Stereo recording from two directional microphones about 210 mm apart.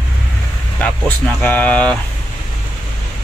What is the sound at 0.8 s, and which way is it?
Speech, 10° left (ahead or behind).